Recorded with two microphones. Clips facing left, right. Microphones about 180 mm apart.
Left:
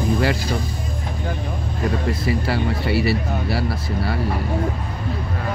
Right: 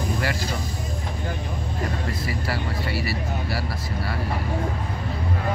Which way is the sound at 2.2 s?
25° left (ahead or behind).